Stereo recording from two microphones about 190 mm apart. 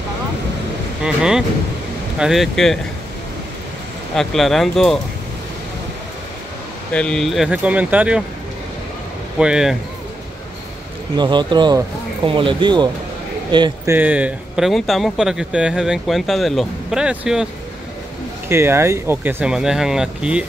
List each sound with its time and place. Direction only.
1.0 s speech: 5° right (ahead or behind)
4.1 s speech: centre (ahead or behind)
6.9 s speech: 5° left (ahead or behind)
9.4 s speech: 5° right (ahead or behind)
11.1 s a man's voice: 25° right (ahead or behind)
13.9 s speech: 10° right (ahead or behind)
18.5 s speech: 15° right (ahead or behind)